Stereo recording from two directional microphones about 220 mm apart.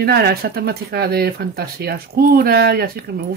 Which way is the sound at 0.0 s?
45° right (ahead or behind).